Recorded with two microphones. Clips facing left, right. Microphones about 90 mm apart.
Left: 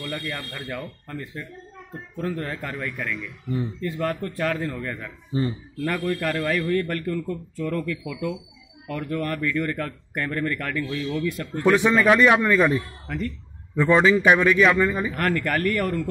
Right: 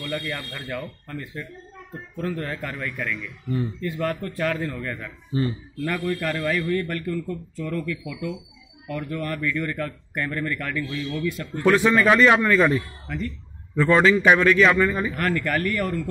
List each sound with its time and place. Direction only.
0.7 s a man's voice: 30° left (ahead or behind)
5.9 s a man's voice: 40° left (ahead or behind)
11.6 s a man's voice: 15° left (ahead or behind)
15.1 s a man's voice: 50° left (ahead or behind)